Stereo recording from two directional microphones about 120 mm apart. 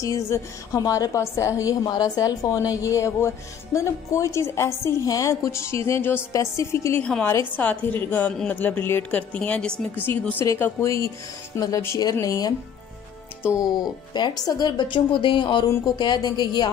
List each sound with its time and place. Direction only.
0.0 s a woman's voice: 25° left (ahead or behind)
7.0 s a woman's voice: 10° left (ahead or behind)
10.0 s a woman's voice: 20° left (ahead or behind)
13.6 s speech: 35° left (ahead or behind)